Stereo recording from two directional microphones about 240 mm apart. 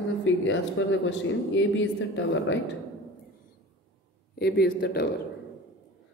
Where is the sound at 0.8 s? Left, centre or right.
Left.